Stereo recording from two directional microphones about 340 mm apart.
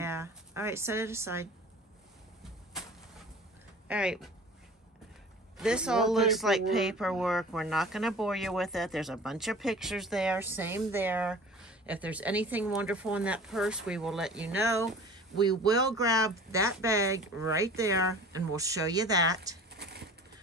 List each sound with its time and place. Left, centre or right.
0.0 s a sound: centre
3.8 s speech: centre
5.6 s speech: centre
19.7 s bird: right